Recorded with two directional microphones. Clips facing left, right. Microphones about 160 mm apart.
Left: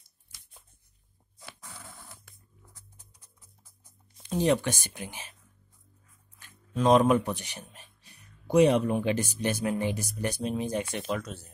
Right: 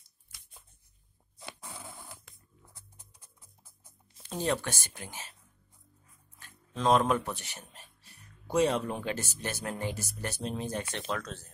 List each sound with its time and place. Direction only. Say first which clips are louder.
1.9 s dog: right 2 dB; 20° right (ahead or behind)
2.7 s music: even; 30° right (ahead or behind)
4.4 s speech: left 6 dB; 15° left (ahead or behind)
6.4 s speech: left 4 dB; 15° left (ahead or behind)